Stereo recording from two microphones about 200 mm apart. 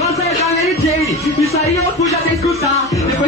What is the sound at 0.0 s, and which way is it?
Music, 15° left (ahead or behind).